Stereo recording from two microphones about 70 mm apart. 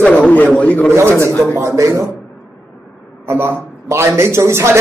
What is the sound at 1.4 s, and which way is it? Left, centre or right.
Speech, right.